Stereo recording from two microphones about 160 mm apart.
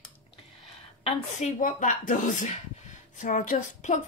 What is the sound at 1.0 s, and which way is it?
A woman's voice, 50° left (ahead or behind).